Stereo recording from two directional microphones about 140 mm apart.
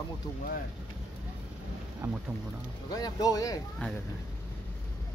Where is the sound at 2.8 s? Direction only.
25° left (ahead or behind).